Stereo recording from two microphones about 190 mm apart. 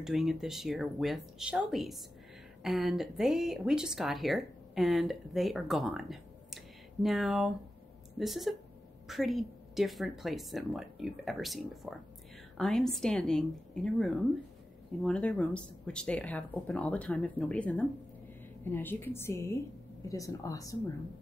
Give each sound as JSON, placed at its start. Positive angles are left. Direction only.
{"t": 0.0, "sound": "a woman's voice", "side_deg": 0}